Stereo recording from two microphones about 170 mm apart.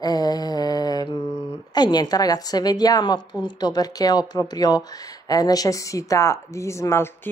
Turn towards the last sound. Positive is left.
turn(degrees=15)  # may be behind; listen again after turning